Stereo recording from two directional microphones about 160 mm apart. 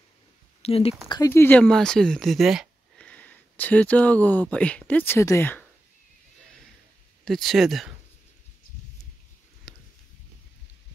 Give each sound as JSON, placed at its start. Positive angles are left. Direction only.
{"t": 0.6, "sound": "speech", "side_deg": 40}
{"t": 1.0, "sound": "speech", "side_deg": 25}
{"t": 1.3, "sound": "speech", "side_deg": 10}
{"t": 7.2, "sound": "speech", "side_deg": 0}
{"t": 9.7, "sound": "a sound", "side_deg": 0}